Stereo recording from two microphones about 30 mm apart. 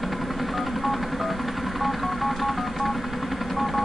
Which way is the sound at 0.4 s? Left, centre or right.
Centre.